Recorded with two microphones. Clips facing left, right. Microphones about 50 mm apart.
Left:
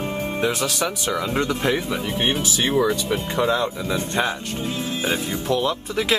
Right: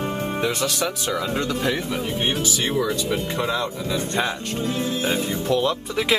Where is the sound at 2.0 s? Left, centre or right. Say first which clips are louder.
Even; left.